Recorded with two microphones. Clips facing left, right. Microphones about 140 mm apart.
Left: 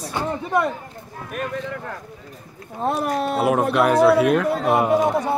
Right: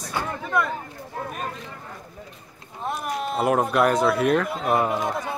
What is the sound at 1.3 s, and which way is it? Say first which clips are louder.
Speech: left 6 dB; 65° left (ahead or behind).